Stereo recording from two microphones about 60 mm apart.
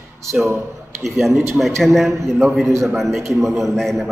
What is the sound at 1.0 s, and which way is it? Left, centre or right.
A man's voice, centre.